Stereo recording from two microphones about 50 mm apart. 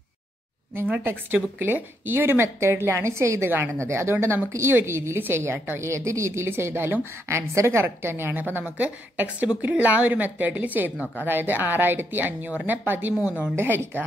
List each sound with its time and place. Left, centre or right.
1.0 s speech: right
5.8 s speech: right
7.2 s a woman's voice: right
7.8 s a woman's voice: right
8.6 s a woman's voice: right
11.2 s a woman's voice: right
13.6 s a woman's voice: right